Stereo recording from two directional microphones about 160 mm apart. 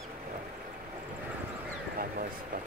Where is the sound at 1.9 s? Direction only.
60° right (ahead or behind).